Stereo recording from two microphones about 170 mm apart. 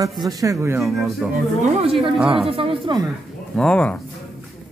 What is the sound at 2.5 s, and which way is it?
Speech, 30° right (ahead or behind).